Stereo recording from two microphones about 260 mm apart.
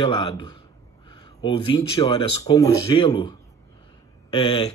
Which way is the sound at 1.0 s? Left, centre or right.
Centre.